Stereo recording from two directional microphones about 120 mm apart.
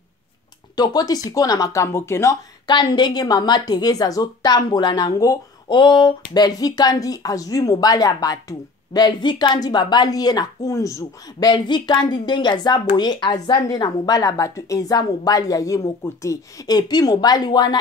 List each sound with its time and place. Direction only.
0.7 s speech: 35° left (ahead or behind)
2.6 s a woman's voice: 40° left (ahead or behind)